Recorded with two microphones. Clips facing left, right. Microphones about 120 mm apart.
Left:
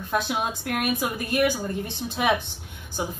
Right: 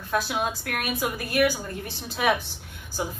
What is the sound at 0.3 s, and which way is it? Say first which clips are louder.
A woman's voice: left 1 dB; 20° left (ahead or behind).